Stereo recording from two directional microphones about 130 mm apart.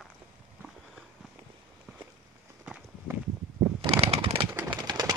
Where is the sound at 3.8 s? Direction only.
50° right (ahead or behind); by 5.1 s 30° right (ahead or behind).